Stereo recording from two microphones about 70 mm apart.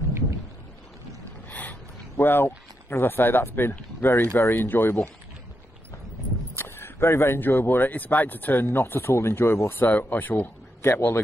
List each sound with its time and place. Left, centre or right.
1.5 s speech: left
6.5 s speech: left